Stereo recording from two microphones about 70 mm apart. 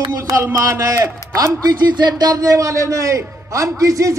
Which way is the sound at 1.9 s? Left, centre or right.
Right.